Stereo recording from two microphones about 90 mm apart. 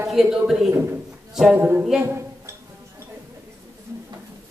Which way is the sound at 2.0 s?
30° right (ahead or behind).